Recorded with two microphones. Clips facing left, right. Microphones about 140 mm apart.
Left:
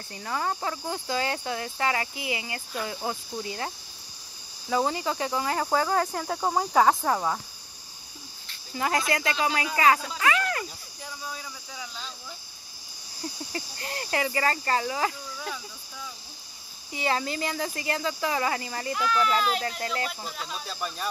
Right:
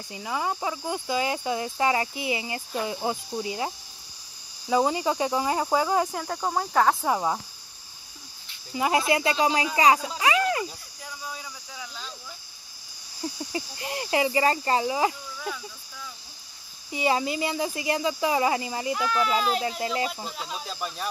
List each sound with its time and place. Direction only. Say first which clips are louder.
0.1 s speech: right 1 dB; 10° right (ahead or behind)
6.1 s speech: left 1 dB; 5° left (ahead or behind)
7.0 s speech: right 1 dB; 15° right (ahead or behind)
8.5 s speech: right 3 dB; 15° right (ahead or behind)
9.8 s cricket: right 1 dB; 15° right (ahead or behind)
13.5 s speech: right 3 dB; 15° right (ahead or behind)
16.9 s speech: right 3 dB; 15° right (ahead or behind)
19.0 s speech: left 1 dB; 25° right (ahead or behind)